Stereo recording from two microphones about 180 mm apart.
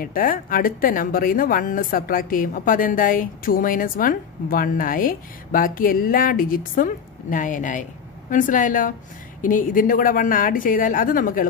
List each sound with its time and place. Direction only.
0.0 s speech: 50° left (ahead or behind)